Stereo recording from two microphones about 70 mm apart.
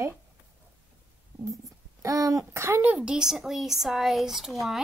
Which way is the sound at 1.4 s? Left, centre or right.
Right.